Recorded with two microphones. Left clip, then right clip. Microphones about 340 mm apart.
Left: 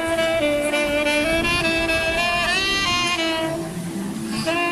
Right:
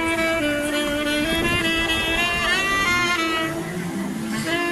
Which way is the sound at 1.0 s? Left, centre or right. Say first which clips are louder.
Left 2 dB; left.